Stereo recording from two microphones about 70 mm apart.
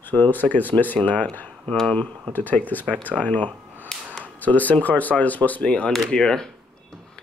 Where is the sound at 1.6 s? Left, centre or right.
Centre.